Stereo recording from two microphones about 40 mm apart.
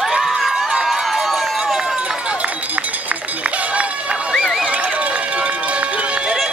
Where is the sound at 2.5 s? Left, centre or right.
Right.